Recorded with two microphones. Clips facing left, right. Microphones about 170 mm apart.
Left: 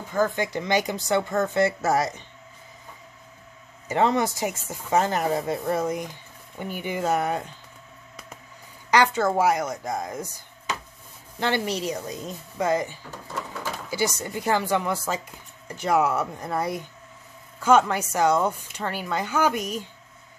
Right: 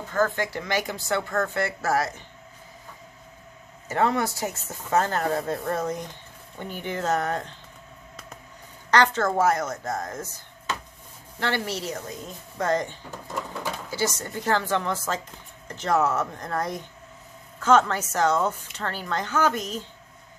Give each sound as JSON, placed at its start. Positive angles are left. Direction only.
{"t": 0.1, "sound": "a woman's voice", "side_deg": 15}
{"t": 3.9, "sound": "a woman's voice", "side_deg": 20}
{"t": 8.9, "sound": "a woman's voice", "side_deg": 10}
{"t": 13.3, "sound": "a sound", "side_deg": -10}
{"t": 13.8, "sound": "a woman's voice", "side_deg": 15}